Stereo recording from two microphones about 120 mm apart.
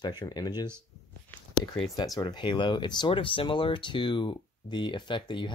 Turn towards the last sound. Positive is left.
turn(degrees=40)  # may be behind; listen again after turning